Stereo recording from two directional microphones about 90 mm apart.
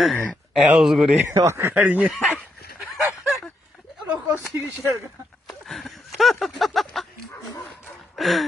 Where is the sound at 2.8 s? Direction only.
Centre (ahead or behind).